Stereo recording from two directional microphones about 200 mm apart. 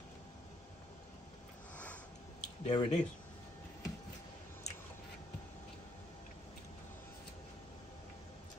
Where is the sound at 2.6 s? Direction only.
30° left (ahead or behind).